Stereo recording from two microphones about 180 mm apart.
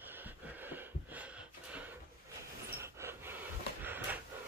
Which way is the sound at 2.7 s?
15° right (ahead or behind).